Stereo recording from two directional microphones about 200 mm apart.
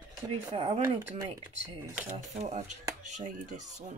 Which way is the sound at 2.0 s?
35° right (ahead or behind).